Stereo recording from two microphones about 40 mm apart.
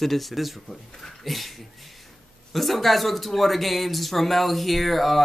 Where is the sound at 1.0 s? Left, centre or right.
Centre.